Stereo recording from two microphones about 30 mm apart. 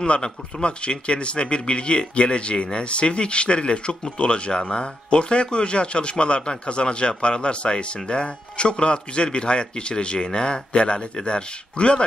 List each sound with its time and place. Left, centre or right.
0.0 s a man's voice: left